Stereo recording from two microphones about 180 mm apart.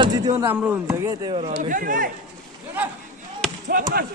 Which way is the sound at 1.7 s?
50° right (ahead or behind).